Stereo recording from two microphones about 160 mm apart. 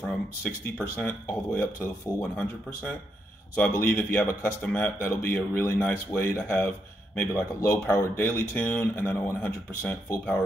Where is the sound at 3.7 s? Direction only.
15° left (ahead or behind).